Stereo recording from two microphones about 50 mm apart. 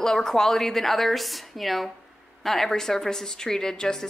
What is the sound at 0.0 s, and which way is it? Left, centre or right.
A woman's voice, centre.